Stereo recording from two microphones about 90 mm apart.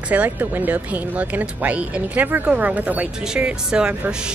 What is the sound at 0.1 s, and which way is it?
Speech, 20° right (ahead or behind).